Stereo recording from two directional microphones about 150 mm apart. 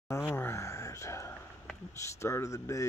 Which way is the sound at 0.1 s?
15° left (ahead or behind).